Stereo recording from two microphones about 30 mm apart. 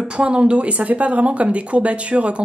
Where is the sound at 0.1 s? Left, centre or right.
Right.